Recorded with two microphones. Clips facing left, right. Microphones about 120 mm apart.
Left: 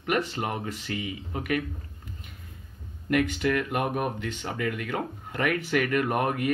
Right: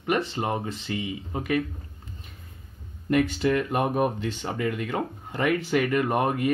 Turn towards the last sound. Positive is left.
turn(degrees=-30)  # may be behind; listen again after turning